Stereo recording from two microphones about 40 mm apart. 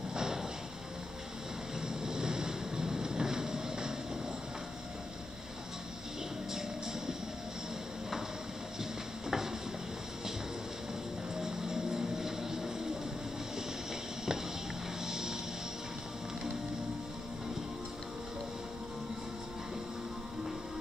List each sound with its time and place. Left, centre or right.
0.1 s a sound: centre
1.8 s waves: centre
6.5 s music: centre
9.3 s a sound: centre
11.3 s music: centre
15.0 s music: centre